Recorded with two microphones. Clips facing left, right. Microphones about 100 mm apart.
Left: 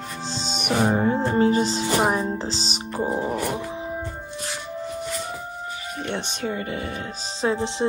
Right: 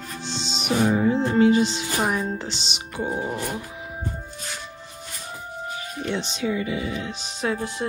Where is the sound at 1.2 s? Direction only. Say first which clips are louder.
Right 3 dB; 40° left (ahead or behind).